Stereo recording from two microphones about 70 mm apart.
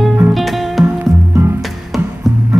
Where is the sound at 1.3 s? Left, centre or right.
Right.